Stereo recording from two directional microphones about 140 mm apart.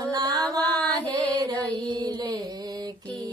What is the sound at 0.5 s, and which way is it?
Music, 25° right (ahead or behind).